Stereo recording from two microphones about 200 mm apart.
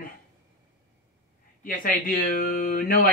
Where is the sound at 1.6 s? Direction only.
45° left (ahead or behind).